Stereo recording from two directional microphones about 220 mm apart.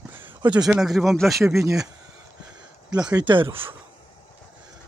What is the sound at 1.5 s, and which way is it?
Speech, 15° right (ahead or behind).